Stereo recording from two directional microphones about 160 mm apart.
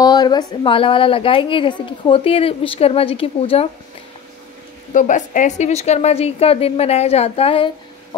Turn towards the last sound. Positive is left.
turn(degrees=35)  # may be behind; listen again after turning